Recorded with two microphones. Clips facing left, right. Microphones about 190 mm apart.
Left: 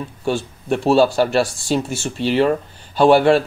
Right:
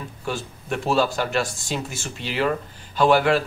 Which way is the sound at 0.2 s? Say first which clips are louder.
Left 8 dB; 30° left (ahead or behind).